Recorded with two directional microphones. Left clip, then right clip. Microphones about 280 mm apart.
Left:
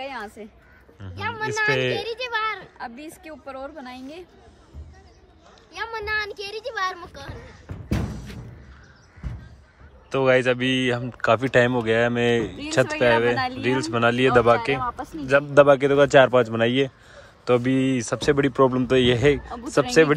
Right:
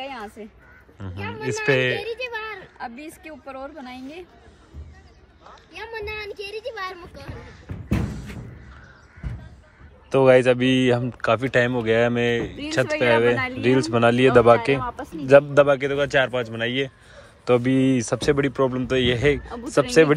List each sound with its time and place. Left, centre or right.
0.1 s a woman's voice: centre
2.0 s a child's voice: left
2.8 s a woman's voice: centre
7.2 s music: centre
10.0 s a woman's voice: centre
15.5 s speech: centre